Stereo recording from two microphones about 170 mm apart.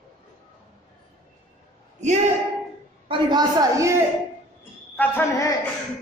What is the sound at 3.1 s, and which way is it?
Speech, 25° right (ahead or behind).